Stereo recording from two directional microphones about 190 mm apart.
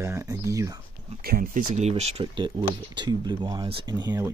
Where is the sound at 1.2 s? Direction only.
45° right (ahead or behind).